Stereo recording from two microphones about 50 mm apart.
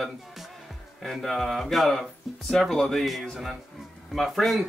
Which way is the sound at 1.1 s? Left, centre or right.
Centre.